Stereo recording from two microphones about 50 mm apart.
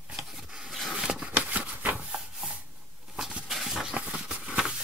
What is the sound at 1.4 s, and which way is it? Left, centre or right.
Shuffling cards, right.